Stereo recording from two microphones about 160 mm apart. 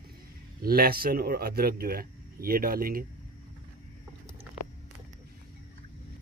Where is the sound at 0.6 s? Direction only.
70° right (ahead or behind).